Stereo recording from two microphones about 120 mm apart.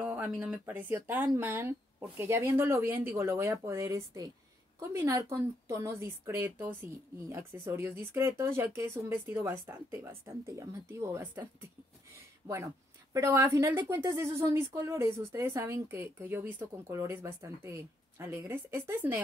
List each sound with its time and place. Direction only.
0.0 s a woman's voice: 20° right (ahead or behind)
13.1 s a woman's voice: 25° right (ahead or behind)